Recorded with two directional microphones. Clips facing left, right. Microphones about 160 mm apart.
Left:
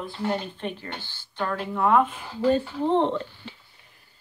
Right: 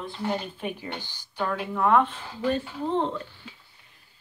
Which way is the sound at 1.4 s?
Centre (ahead or behind).